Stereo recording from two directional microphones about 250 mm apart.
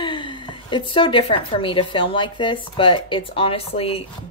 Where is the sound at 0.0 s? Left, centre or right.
Centre.